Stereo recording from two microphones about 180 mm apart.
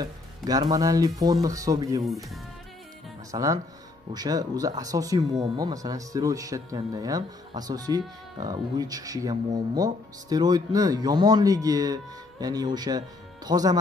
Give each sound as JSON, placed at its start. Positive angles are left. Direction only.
{"t": 0.0, "sound": "speech", "side_deg": -20}
{"t": 3.3, "sound": "speech", "side_deg": -20}